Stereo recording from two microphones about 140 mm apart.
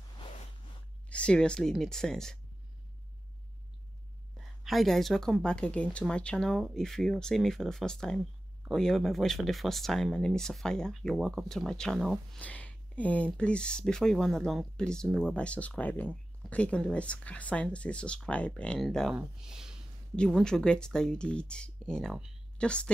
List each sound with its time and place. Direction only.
1.0 s speech: 10° left (ahead or behind)
4.6 s a woman's voice: centre (ahead or behind)